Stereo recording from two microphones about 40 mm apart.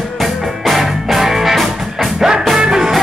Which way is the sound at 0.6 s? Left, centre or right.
Centre.